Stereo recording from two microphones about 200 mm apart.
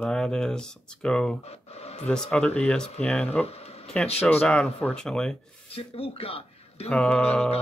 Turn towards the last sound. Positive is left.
turn(degrees=5)  # may be behind; listen again after turning